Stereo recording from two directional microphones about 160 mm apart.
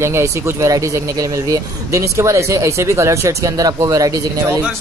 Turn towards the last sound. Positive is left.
turn(degrees=-20)  # may be behind; listen again after turning